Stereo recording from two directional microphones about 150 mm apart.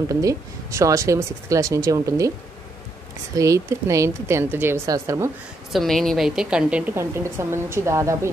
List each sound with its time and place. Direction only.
0.1 s speech: 20° right (ahead or behind)
3.3 s speech: 20° right (ahead or behind)
5.7 s a woman's voice: centre (ahead or behind); by 8.3 s 20° right (ahead or behind)